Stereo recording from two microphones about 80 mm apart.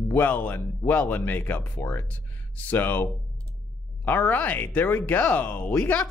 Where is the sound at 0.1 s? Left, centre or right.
Left.